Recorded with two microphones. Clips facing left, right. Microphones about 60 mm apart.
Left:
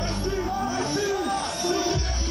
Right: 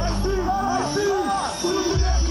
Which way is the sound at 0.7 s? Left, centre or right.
Right.